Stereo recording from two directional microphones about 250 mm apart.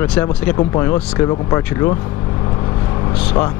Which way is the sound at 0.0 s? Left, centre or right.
Centre.